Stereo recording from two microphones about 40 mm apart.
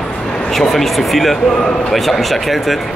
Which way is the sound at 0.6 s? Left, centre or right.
Centre.